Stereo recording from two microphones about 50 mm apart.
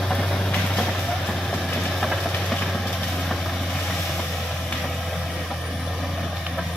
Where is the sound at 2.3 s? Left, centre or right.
Centre.